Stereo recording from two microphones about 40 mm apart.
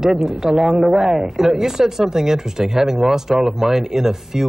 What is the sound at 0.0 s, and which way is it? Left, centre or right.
Speech, centre.